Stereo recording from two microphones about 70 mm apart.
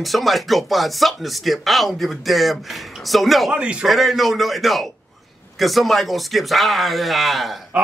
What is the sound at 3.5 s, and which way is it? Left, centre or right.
Speech, centre.